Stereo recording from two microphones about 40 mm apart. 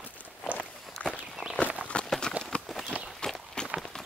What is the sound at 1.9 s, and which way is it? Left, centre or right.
Clip-clop, left.